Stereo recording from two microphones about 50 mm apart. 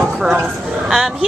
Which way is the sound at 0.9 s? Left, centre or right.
Centre.